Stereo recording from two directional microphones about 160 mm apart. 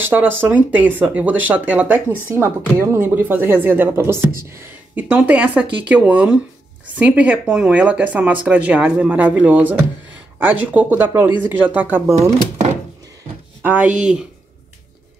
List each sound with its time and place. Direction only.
0.0 s speech: 15° right (ahead or behind)
13.6 s speech: 10° right (ahead or behind)